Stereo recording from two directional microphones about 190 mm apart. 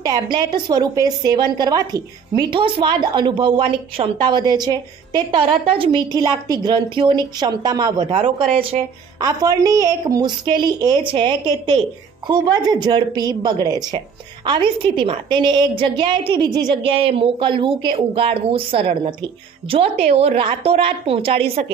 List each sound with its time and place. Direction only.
0.0 s a woman's voice: 20° right (ahead or behind)
9.2 s a woman's voice: 20° right (ahead or behind)